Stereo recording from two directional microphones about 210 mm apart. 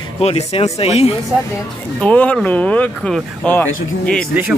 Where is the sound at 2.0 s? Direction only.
5° left (ahead or behind).